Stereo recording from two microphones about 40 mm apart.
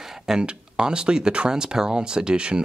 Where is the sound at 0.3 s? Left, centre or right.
Centre.